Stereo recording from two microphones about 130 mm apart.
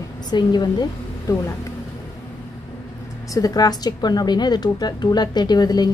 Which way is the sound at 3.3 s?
30° left (ahead or behind).